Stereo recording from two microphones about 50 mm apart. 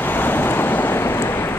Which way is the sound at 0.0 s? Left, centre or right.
Left.